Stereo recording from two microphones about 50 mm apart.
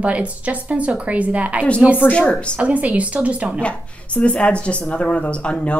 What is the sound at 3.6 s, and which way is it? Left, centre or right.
Speech, left.